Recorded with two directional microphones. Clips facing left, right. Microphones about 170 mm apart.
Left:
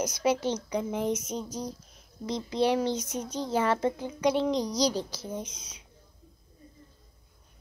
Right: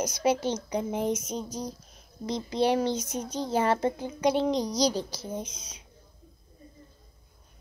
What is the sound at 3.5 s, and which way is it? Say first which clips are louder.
Speech: right 1 dB; 40° right (ahead or behind).